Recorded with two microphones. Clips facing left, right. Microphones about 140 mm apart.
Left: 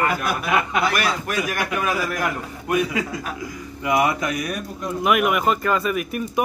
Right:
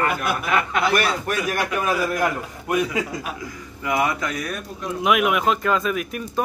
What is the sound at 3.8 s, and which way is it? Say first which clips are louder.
Speech: left 2 dB; 25° left (ahead or behind).